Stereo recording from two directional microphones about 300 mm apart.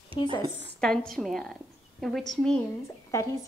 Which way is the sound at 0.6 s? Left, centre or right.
Centre.